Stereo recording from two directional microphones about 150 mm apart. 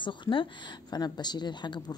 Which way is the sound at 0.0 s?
30° left (ahead or behind).